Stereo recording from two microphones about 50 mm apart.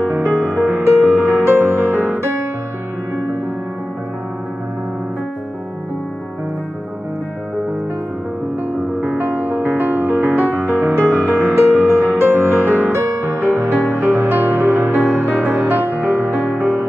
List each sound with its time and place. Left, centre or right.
0.4 s music: centre
0.7 s music: right
9.0 s music: right
12.6 s music: right
15.0 s music: centre
15.4 s music: right